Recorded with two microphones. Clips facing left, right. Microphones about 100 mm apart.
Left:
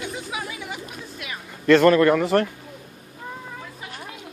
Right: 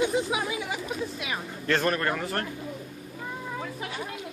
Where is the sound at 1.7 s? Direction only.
90° left.